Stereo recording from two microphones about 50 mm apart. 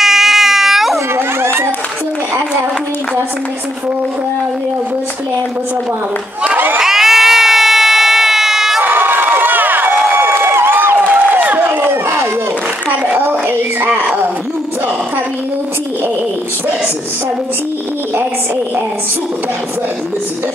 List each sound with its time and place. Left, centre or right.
0.0 s baby cry: centre
0.9 s a sound: right
6.4 s crowd: right
6.8 s crowd: centre
8.8 s crowd: right
11.1 s a sound: right